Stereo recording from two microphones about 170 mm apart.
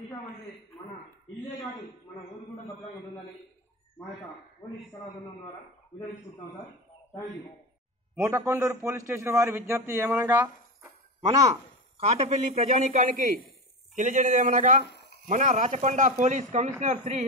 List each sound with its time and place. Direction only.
4.6 s a man's voice: 25° left (ahead or behind)
8.3 s speech: 20° right (ahead or behind)
12.0 s a man's voice: 40° right (ahead or behind)
14.9 s a sound: 70° left (ahead or behind)
15.2 s a man's voice: 45° right (ahead or behind)